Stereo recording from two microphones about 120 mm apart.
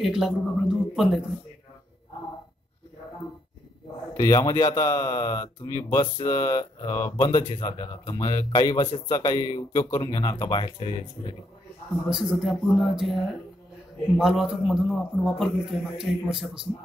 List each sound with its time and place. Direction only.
0.0 s speech: centre (ahead or behind)
4.2 s speech: 30° left (ahead or behind)
5.7 s speech: 25° left (ahead or behind)
7.4 s speech: 45° left (ahead or behind)
8.1 s speech: 30° left (ahead or behind)
8.7 s speech: 45° left (ahead or behind)
9.1 s speech: 35° left (ahead or behind)
12.1 s speech: centre (ahead or behind)